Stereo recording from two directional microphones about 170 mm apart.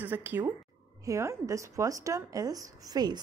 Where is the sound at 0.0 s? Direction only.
10° right (ahead or behind).